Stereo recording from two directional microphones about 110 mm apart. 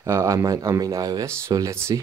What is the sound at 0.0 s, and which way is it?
Speech, 30° right (ahead or behind).